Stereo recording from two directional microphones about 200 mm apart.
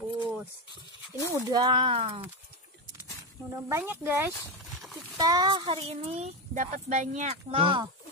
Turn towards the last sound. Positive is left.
turn(degrees=-25)  # may be behind; listen again after turning